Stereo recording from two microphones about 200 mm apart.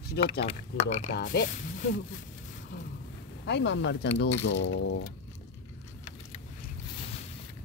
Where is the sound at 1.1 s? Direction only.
55° left (ahead or behind).